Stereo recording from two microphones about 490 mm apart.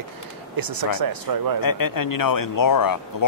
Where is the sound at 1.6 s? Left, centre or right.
Left.